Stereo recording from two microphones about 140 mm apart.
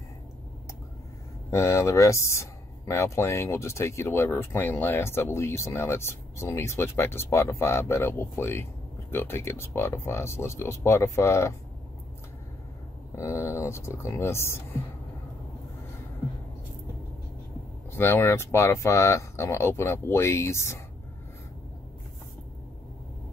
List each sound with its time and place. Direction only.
1.5 s speech: 20° left (ahead or behind)
13.1 s speech: 20° left (ahead or behind)
17.9 s speech: 15° left (ahead or behind)